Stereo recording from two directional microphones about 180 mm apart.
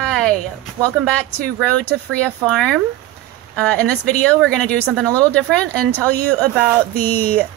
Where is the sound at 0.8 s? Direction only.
5° left (ahead or behind).